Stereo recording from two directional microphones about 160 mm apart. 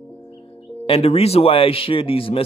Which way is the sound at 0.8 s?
40° left (ahead or behind).